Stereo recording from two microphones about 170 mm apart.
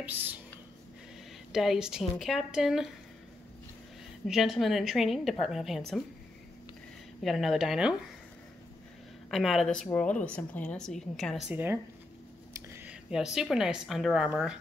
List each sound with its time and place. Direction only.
0.0 s speech: 10° right (ahead or behind)
1.5 s a woman's voice: centre (ahead or behind)
4.3 s a woman's voice: centre (ahead or behind)
7.2 s a woman's voice: centre (ahead or behind)
9.3 s a woman's voice: centre (ahead or behind)
12.5 s a sound: 15° right (ahead or behind)
13.1 s a woman's voice: 5° right (ahead or behind)